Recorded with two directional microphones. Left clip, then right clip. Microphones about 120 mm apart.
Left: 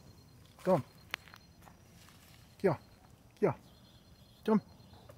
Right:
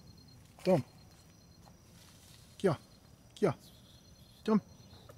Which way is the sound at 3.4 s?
20° right (ahead or behind).